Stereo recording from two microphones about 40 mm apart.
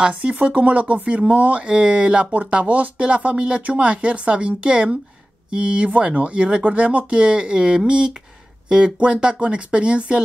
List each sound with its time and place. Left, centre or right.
0.1 s speech: right
3.3 s speech: right